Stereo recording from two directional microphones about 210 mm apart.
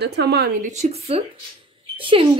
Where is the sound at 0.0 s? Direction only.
50° right (ahead or behind).